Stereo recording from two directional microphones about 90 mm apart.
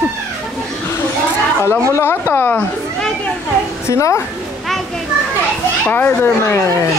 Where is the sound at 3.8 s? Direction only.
30° left (ahead or behind).